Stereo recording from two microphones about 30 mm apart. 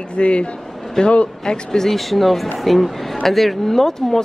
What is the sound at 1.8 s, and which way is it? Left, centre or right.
Speech, centre.